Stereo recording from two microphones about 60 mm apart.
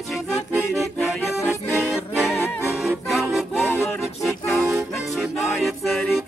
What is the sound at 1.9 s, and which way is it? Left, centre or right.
Music, centre.